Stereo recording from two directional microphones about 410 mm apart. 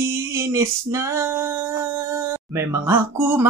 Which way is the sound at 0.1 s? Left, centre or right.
Centre.